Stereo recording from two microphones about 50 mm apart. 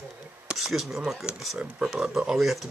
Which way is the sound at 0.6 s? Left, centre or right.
Centre.